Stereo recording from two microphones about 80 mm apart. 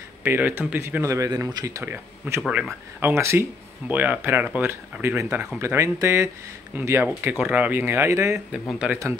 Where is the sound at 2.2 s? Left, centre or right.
Right.